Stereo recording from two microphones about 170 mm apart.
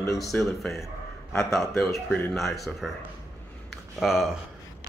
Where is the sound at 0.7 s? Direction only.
15° left (ahead or behind).